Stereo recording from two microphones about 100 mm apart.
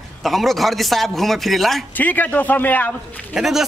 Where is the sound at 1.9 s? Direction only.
15° left (ahead or behind).